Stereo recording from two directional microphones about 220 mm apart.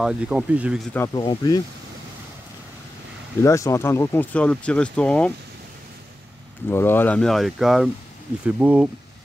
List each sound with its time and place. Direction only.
0.0 s speech: 5° right (ahead or behind)
0.9 s speech: 15° left (ahead or behind)
3.4 s speech: 15° left (ahead or behind)
6.7 s speech: 10° left (ahead or behind); by 8.8 s 5° right (ahead or behind)